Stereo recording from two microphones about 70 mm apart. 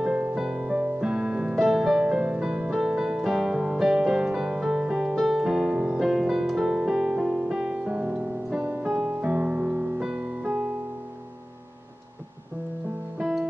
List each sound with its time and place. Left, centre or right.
0.0 s music: centre
13.2 s music: centre